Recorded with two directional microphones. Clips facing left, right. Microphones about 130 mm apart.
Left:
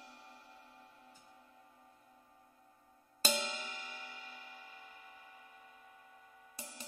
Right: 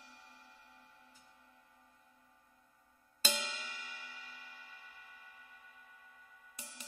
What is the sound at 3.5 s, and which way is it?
Music, 45° left (ahead or behind).